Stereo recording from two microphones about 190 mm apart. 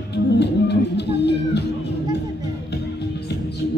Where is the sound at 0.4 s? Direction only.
65° left (ahead or behind).